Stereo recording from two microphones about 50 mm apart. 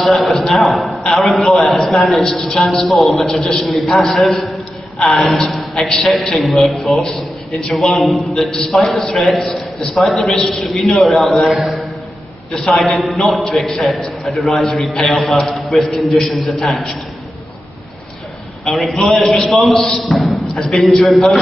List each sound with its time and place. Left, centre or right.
0.0 s a sound: centre
1.2 s a man's voice: centre
2.3 s a woman's voice: left
2.6 s a man's voice: centre
18.7 s a man's voice: centre